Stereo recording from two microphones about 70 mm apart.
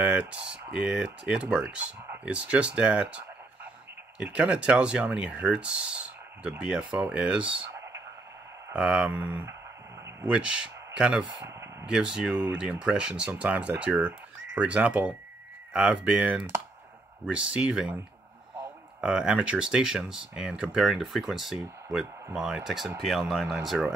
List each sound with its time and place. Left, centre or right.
0.0 s speech: centre
8.7 s speech: centre
18.9 s speech: centre